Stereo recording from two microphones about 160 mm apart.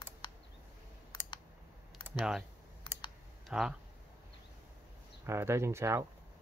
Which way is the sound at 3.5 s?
5° right (ahead or behind).